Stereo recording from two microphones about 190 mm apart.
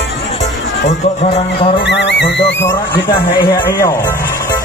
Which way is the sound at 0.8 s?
30° left (ahead or behind).